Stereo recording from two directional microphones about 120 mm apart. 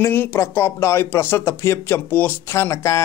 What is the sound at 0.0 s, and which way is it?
Speech, 20° left (ahead or behind).